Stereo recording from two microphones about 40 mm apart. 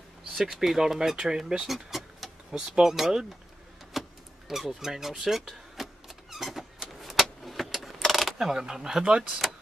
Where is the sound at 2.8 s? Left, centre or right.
Centre.